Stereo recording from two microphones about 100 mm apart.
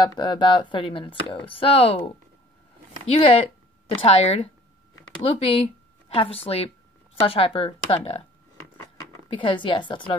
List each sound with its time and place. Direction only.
0.0 s speech: 50° left (ahead or behind); by 8.3 s 70° left (ahead or behind)
9.3 s a woman's voice: 55° left (ahead or behind)